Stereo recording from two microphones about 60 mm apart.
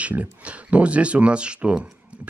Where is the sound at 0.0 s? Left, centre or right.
Right.